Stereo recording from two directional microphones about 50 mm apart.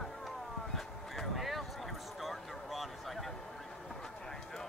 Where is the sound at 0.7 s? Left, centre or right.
Centre.